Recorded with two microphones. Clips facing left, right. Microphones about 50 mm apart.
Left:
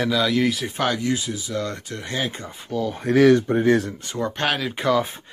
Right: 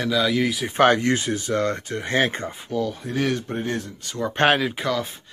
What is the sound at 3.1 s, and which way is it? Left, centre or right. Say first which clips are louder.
Speech: left 9 dB; left.